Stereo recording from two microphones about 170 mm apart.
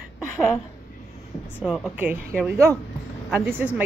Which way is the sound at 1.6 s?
5° right (ahead or behind).